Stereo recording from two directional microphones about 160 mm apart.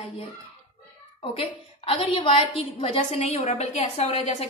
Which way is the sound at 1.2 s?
35° left (ahead or behind).